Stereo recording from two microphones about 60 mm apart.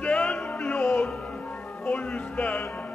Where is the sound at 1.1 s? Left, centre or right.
Centre.